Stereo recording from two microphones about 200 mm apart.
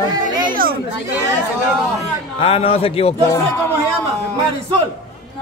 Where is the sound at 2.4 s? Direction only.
30° left (ahead or behind).